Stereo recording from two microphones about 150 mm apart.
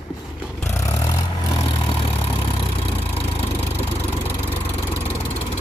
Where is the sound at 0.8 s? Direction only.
20° left (ahead or behind).